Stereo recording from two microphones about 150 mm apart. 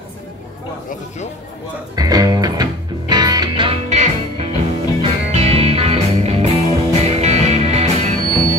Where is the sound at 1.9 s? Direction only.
25° right (ahead or behind).